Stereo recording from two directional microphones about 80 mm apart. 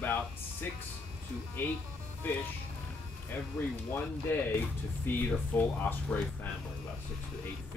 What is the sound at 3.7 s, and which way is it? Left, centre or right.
Speech, left.